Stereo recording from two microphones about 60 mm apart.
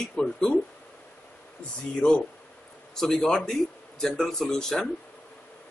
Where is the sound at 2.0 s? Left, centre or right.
Centre.